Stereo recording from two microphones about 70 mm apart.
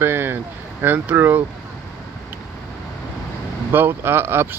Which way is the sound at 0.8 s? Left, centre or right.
Right.